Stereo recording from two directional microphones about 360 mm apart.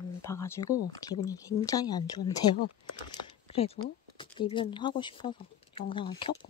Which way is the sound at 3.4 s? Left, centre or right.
Centre.